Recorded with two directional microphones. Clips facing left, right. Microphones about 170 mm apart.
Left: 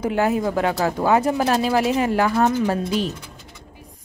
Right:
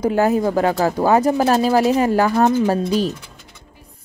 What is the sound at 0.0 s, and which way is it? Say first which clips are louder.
Speech: right 4 dB; 40° right (ahead or behind).